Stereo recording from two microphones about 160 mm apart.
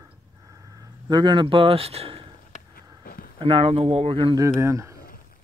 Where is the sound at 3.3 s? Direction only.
35° right (ahead or behind).